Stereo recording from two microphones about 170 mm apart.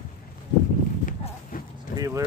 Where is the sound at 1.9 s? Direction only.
20° right (ahead or behind).